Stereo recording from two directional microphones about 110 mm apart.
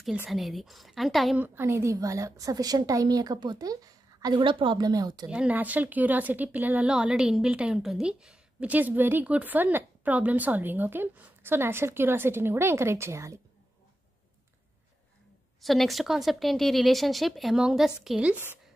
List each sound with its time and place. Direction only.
0.3 s speech: centre (ahead or behind)
1.3 s a woman's voice: 20° right (ahead or behind); by 5.3 s 35° right (ahead or behind)
5.3 s speech: 10° right (ahead or behind); by 13.4 s 25° right (ahead or behind)
15.6 s speech: centre (ahead or behind)